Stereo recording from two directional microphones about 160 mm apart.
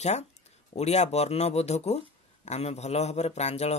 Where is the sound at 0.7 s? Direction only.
45° left (ahead or behind).